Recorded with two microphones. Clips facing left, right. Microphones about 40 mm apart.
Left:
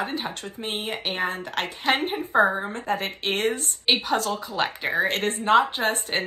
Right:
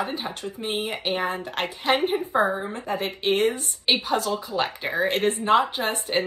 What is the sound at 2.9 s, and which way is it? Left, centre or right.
Speech, left.